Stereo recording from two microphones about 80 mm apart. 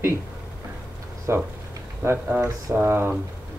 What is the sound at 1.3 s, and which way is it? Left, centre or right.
Speech, right.